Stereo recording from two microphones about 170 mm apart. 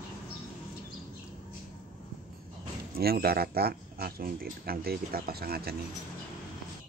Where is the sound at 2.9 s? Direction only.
65° right (ahead or behind).